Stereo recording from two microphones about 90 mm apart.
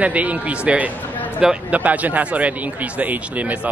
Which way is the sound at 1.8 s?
20° right (ahead or behind).